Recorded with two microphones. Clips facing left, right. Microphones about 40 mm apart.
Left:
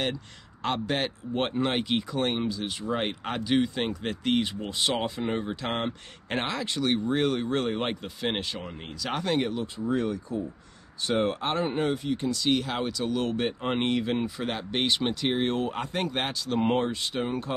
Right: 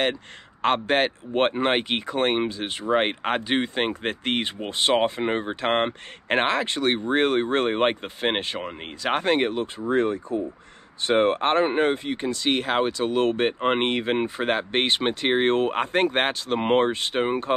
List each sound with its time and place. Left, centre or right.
0.6 s speech: right